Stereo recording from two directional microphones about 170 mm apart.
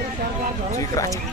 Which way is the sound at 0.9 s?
20° left (ahead or behind).